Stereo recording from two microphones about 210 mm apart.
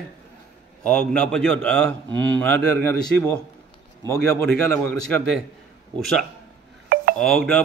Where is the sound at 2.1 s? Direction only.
10° left (ahead or behind).